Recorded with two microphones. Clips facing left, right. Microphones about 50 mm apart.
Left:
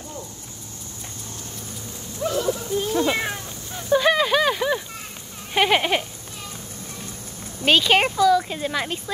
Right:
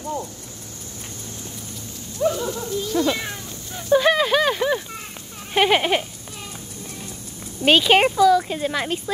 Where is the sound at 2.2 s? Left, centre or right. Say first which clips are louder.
Right 5 dB; centre.